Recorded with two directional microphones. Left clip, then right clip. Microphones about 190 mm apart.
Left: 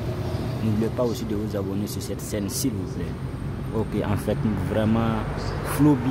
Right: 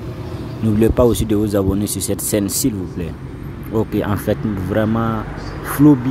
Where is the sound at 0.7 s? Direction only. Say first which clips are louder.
Right 12 dB; 40° right (ahead or behind).